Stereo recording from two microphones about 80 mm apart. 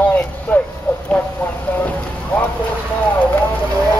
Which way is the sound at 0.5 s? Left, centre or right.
Left.